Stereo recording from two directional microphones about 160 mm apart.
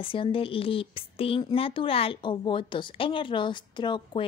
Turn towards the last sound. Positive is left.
turn(degrees=30)  # may be behind; listen again after turning